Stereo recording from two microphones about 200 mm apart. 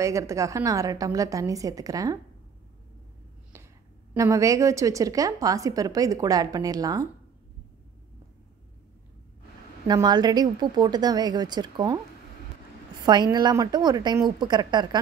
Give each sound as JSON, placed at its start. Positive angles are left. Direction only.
{"t": 0.0, "sound": "a woman's voice", "side_deg": -15}
{"t": 3.5, "sound": "a sound", "side_deg": -15}
{"t": 4.1, "sound": "a woman's voice", "side_deg": -15}
{"t": 9.8, "sound": "a woman's voice", "side_deg": -20}
{"t": 13.0, "sound": "a woman's voice", "side_deg": -20}